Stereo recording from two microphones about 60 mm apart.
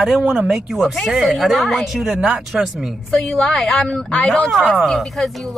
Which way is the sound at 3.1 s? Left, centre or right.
Centre.